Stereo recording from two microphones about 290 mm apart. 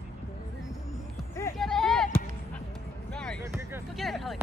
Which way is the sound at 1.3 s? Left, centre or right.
Centre.